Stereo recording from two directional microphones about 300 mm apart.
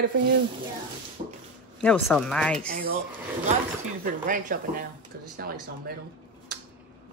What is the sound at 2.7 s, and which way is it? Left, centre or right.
Speech, right.